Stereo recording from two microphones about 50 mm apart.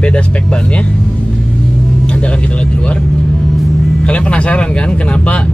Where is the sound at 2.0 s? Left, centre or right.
Left.